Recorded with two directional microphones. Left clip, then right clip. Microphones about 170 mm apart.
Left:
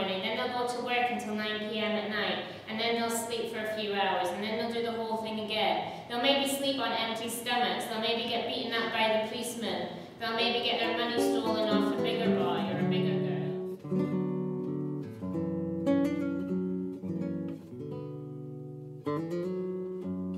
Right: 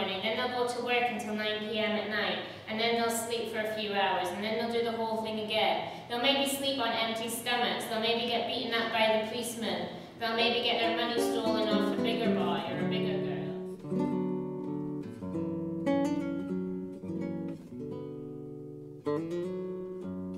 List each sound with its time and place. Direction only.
0.0 s a woman's voice: centre (ahead or behind)
13.9 s music: 35° right (ahead or behind)
15.8 s music: 35° right (ahead or behind)